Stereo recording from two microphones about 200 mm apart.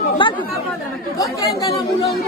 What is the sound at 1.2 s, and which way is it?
Speech, 15° left (ahead or behind).